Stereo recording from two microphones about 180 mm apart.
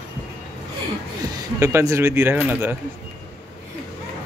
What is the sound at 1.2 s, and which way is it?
Speech, 20° right (ahead or behind).